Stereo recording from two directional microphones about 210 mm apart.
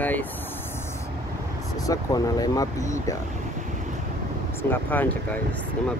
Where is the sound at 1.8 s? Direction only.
15° left (ahead or behind).